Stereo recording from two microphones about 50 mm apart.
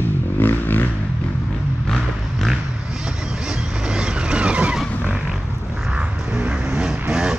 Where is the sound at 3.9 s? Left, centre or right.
Right.